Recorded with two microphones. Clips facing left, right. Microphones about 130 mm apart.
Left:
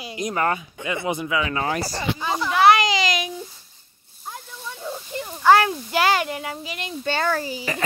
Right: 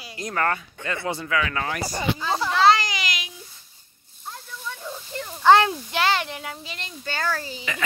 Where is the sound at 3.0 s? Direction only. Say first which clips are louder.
Left 8 dB; 45° left (ahead or behind).